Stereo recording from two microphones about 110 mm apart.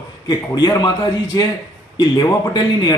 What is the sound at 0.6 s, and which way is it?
A man's voice, 30° left (ahead or behind).